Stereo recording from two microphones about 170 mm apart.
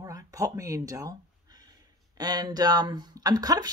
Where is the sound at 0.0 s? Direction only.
20° right (ahead or behind).